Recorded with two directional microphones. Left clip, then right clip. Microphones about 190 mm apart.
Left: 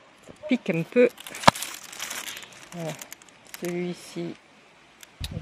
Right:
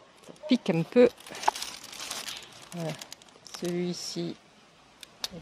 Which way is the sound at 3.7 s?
5° right (ahead or behind).